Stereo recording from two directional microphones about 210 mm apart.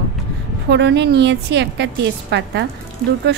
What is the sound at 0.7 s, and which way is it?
A woman's voice, 55° right (ahead or behind).